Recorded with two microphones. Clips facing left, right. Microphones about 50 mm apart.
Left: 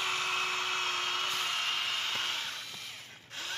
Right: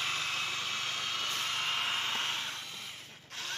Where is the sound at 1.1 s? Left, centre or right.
Centre.